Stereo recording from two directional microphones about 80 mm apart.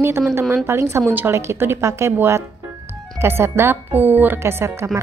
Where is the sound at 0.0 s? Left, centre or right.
Right.